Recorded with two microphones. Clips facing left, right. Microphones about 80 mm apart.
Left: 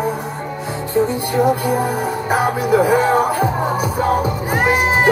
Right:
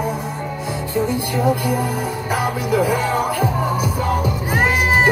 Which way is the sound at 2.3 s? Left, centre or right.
Left.